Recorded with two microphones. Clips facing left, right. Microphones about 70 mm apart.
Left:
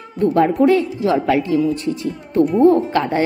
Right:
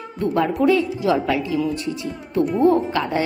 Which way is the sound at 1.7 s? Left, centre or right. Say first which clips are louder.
Left 4 dB; left.